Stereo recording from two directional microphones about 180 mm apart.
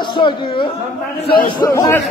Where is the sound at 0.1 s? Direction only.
25° left (ahead or behind).